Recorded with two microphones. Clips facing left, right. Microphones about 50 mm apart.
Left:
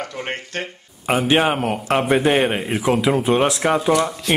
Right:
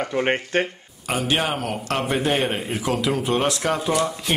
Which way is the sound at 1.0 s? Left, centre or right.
Left.